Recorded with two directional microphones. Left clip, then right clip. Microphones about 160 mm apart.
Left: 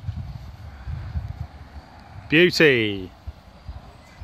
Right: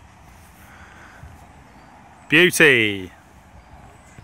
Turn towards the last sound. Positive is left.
turn(degrees=-5)  # may be behind; listen again after turning